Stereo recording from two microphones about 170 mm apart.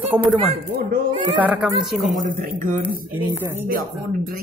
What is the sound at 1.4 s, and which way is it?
Speech, 5° right (ahead or behind).